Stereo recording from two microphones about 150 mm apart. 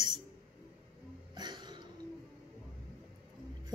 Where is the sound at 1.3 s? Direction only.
30° right (ahead or behind).